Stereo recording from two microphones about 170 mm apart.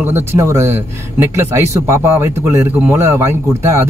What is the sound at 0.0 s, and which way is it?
Speech, 15° right (ahead or behind).